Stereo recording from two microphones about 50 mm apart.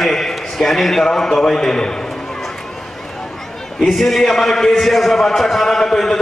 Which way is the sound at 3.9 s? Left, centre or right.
Centre.